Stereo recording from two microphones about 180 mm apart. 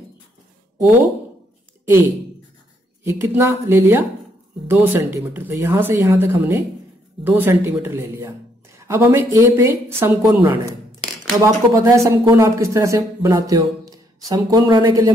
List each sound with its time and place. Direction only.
3.0 s speech: 15° right (ahead or behind)